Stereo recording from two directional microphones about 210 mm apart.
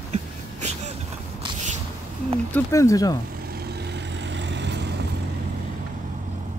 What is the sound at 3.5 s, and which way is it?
Vehicle, 50° right (ahead or behind).